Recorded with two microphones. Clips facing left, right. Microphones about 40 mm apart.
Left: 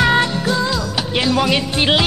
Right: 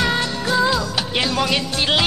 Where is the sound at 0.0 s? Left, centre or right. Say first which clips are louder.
Left 6 dB; left.